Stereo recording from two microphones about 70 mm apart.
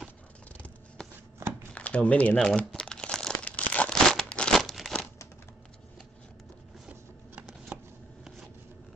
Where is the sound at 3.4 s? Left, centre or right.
Centre.